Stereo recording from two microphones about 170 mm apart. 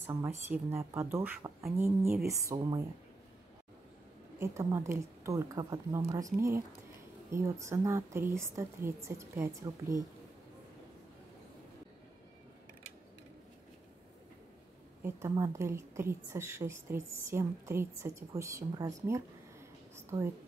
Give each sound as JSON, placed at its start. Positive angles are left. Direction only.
{"t": 0.0, "sound": "a woman's voice", "side_deg": -15}
{"t": 4.4, "sound": "a woman's voice", "side_deg": -15}
{"t": 15.0, "sound": "a woman's voice", "side_deg": -15}